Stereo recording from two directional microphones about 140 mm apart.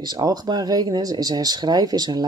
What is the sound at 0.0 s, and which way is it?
Speech, 30° right (ahead or behind).